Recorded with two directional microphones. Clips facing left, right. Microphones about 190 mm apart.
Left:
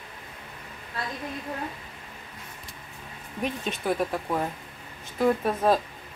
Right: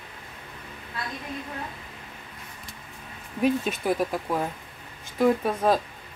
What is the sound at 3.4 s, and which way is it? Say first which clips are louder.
Speech: right 6 dB; 5° right (ahead or behind).